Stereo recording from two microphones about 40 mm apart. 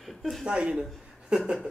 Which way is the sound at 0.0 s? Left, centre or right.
Centre.